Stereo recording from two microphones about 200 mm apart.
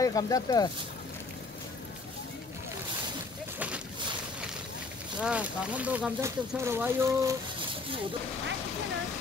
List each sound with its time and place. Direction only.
0.0 s speech: 15° left (ahead or behind)
3.5 s a sound: 5° right (ahead or behind)
5.2 s speech: 5° right (ahead or behind)